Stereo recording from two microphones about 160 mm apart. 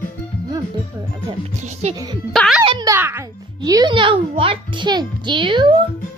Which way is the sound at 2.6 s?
30° right (ahead or behind).